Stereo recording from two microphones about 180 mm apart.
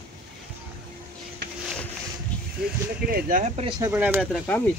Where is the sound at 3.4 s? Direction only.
35° right (ahead or behind).